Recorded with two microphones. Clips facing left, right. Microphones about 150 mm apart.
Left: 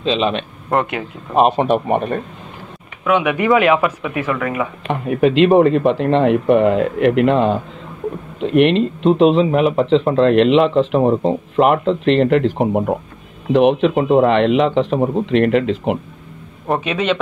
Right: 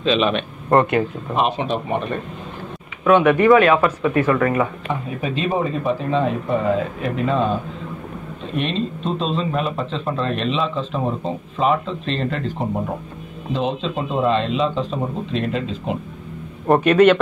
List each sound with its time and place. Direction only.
0.0 s speech: 25° left (ahead or behind)
0.7 s speech: 5° left (ahead or behind)
1.3 s speech: 45° left (ahead or behind)
3.1 s speech: 5° left (ahead or behind)
3.3 s speech: 15° left (ahead or behind)
4.8 s speech: 80° left
16.6 s speech: centre (ahead or behind)